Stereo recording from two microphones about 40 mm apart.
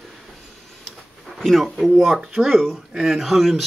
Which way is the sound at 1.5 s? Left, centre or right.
Centre.